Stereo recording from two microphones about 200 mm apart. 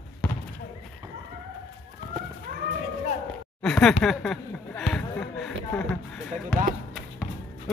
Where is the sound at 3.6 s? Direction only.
5° left (ahead or behind).